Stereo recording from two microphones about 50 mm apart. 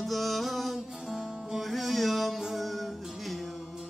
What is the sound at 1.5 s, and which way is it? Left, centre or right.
Chant, centre.